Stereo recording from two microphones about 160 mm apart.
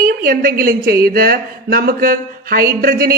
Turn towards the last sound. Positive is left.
turn(degrees=-65)  # may be behind; listen again after turning